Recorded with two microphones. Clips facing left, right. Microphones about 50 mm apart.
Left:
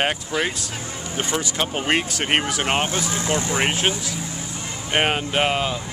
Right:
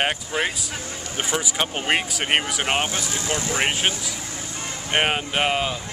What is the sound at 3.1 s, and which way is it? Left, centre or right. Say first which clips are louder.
Speech: left 3 dB; left.